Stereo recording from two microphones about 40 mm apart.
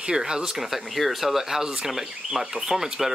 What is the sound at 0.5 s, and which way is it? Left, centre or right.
Speech, centre.